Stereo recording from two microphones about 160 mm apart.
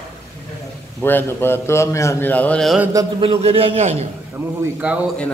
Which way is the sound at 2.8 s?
20° right (ahead or behind).